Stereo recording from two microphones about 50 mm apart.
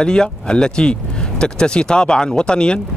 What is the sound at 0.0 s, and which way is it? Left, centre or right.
Speech, centre.